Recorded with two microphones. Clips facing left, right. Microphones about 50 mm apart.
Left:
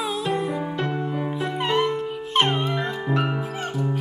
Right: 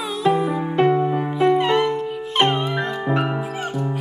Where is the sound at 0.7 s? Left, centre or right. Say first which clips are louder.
Right 9 dB; right.